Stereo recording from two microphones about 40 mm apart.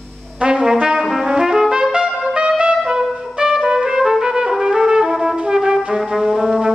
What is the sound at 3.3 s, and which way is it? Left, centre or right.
Trumpet, centre.